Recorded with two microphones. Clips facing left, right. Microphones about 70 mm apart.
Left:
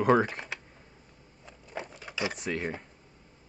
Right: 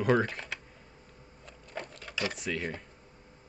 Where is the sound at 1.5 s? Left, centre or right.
Centre.